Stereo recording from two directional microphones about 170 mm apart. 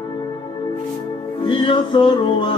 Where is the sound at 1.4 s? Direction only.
30° left (ahead or behind).